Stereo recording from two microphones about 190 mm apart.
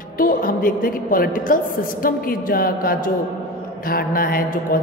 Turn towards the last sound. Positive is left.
turn(degrees=50)  # may be behind; listen again after turning